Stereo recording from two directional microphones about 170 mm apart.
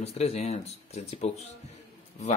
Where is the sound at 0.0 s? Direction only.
40° left (ahead or behind).